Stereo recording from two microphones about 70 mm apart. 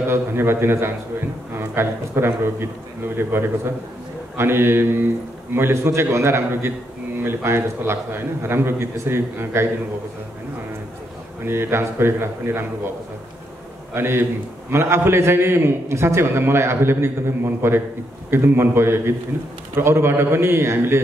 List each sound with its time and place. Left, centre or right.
0.1 s a man's voice: right
11.4 s a man's voice: right
13.9 s a man's voice: right